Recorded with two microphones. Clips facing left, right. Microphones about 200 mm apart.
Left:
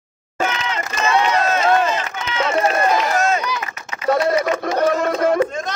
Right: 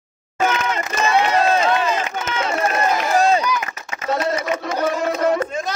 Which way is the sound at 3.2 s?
30° right (ahead or behind).